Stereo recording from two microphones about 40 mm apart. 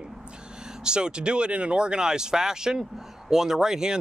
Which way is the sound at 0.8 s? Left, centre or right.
Right.